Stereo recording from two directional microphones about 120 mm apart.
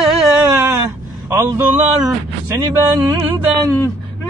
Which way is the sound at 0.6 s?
20° right (ahead or behind).